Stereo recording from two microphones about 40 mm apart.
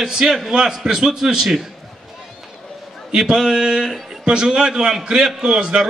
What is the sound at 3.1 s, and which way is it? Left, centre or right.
A man's voice, centre.